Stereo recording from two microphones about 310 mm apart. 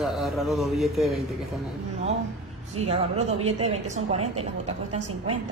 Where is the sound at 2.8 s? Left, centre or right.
Centre.